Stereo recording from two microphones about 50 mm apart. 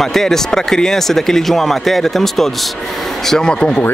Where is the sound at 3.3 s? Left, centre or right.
Centre.